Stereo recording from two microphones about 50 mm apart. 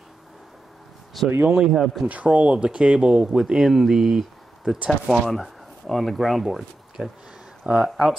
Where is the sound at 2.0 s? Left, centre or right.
Right; by 4.7 s centre.